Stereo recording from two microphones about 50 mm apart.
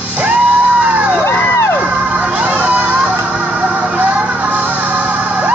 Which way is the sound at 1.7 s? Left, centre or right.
Right.